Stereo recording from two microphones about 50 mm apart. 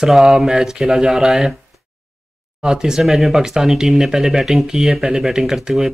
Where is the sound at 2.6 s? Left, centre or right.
Centre.